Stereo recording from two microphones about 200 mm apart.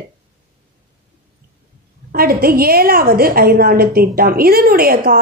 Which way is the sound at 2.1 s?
50° right (ahead or behind).